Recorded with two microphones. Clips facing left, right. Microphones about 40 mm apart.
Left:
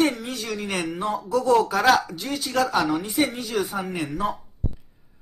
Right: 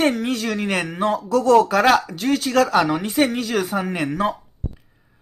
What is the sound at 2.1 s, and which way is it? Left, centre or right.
Speech, right.